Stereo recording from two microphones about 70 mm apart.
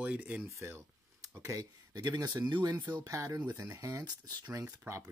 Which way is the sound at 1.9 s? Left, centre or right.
Right.